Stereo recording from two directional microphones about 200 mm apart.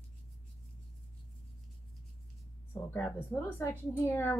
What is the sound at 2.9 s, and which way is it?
Speech, 10° left (ahead or behind).